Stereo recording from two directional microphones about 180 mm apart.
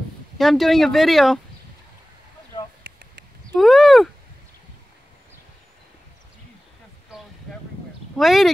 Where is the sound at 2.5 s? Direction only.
25° left (ahead or behind).